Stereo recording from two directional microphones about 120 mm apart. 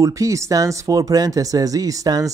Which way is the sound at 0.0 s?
25° right (ahead or behind).